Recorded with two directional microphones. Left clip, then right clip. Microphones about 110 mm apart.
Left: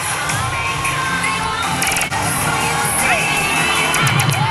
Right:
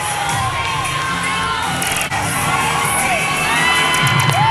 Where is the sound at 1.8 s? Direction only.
15° left (ahead or behind).